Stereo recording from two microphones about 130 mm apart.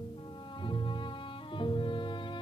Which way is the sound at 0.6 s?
40° left (ahead or behind).